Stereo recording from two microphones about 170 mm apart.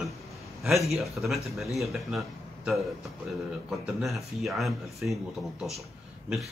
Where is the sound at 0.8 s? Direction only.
Centre (ahead or behind).